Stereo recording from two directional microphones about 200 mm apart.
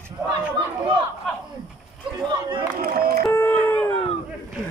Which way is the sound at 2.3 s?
20° right (ahead or behind).